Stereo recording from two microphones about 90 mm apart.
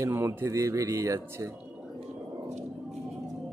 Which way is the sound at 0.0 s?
30° right (ahead or behind).